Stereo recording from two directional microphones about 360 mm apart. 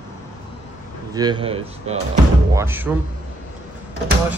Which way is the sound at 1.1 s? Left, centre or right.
Centre.